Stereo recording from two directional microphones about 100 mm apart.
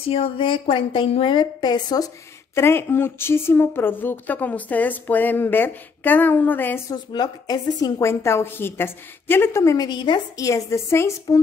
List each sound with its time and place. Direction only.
0.1 s a woman's voice: 65° left (ahead or behind); by 2.0 s 45° left (ahead or behind)
2.5 s speech: 25° left (ahead or behind)
6.9 s a woman's voice: 40° left (ahead or behind)
8.1 s speech: 25° left (ahead or behind)
9.8 s a woman's voice: 45° left (ahead or behind); by 11.3 s 30° left (ahead or behind)